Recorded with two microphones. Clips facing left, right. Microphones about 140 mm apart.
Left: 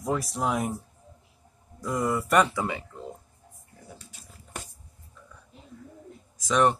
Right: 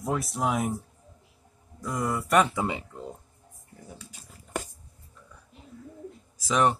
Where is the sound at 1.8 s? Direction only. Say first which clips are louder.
Left 2 dB; centre (ahead or behind).